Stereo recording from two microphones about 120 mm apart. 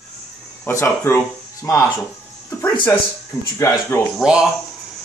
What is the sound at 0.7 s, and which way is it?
Speech, 20° left (ahead or behind).